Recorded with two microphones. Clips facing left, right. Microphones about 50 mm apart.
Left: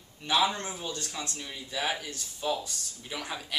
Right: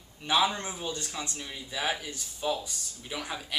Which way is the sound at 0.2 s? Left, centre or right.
Centre.